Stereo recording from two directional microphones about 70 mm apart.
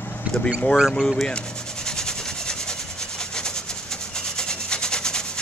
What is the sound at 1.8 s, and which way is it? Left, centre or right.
Rub, centre.